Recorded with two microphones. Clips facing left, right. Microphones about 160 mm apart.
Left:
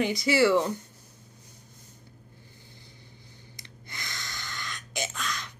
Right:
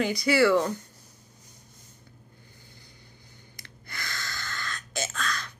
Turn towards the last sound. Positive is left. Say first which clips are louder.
# right 2 dB
turn(degrees=20)  # may be behind; listen again after turning